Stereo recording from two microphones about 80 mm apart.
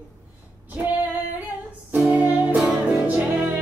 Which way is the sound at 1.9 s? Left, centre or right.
Centre.